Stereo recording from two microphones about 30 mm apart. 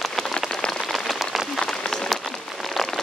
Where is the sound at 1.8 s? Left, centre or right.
Centre.